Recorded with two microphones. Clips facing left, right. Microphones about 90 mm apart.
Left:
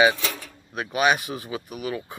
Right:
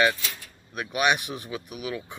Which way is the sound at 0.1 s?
85° left.